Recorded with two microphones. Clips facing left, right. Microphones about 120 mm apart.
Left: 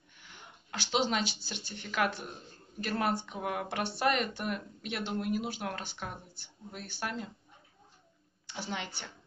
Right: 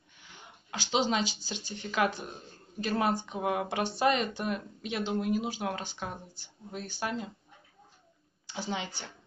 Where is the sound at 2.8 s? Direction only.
25° right (ahead or behind).